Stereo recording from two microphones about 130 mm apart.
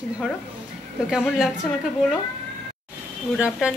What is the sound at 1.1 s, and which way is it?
Speech, 5° right (ahead or behind).